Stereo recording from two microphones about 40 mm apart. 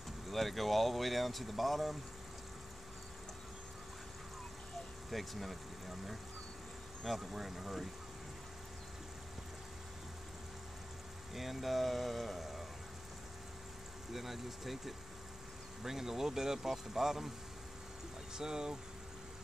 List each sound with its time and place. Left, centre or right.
0.3 s speech: centre
5.1 s speech: centre
11.3 s speech: centre
14.1 s speech: centre
18.3 s speech: centre